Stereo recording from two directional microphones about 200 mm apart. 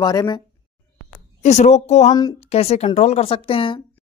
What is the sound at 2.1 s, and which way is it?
Speech, 20° left (ahead or behind).